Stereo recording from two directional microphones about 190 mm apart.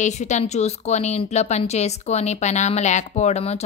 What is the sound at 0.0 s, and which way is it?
Speech, 40° left (ahead or behind).